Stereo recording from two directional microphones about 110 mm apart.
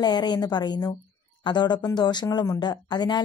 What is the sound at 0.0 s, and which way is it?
A woman's voice, 40° left (ahead or behind).